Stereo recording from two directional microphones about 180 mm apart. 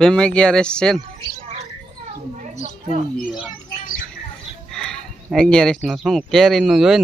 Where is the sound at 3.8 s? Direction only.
45° left (ahead or behind).